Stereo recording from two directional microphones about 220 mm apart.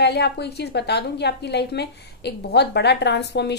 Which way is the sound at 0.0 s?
50° left (ahead or behind).